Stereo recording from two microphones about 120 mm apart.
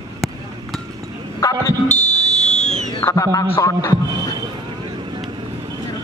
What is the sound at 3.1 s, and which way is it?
Speech, 25° left (ahead or behind).